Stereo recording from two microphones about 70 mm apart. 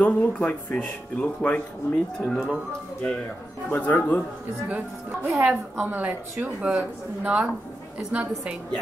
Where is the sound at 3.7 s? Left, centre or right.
Left.